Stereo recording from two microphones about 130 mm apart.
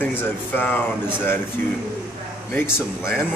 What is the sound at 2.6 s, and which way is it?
Speech, 20° left (ahead or behind).